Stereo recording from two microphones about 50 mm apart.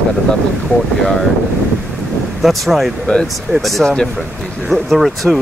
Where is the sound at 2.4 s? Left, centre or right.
Centre.